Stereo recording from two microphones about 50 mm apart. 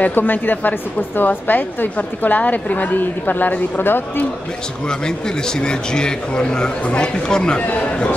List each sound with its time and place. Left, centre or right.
0.0 s a woman's voice: left
4.8 s speech: centre
7.6 s a man's voice: left